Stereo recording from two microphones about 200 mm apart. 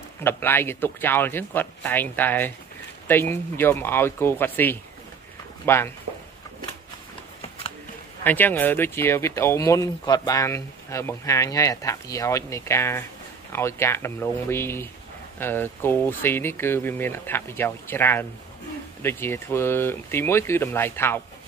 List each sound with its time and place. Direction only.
0.2 s speech: 10° left (ahead or behind)
7.4 s shuffling cards: 30° left (ahead or behind)
8.2 s speech: 10° left (ahead or behind)